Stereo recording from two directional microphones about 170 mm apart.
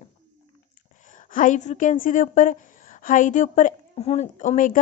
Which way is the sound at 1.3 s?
50° left (ahead or behind).